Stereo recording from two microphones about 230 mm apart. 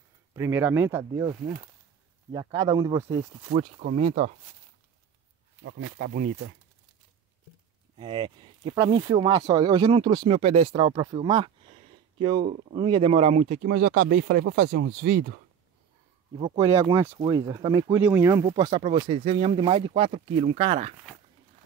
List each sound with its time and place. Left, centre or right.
0.3 s speech: centre
2.3 s speech: centre
5.6 s speech: right
8.0 s speech: right
13.6 s speech: right
16.3 s speech: centre
17.9 s speech: centre; by 20.9 s right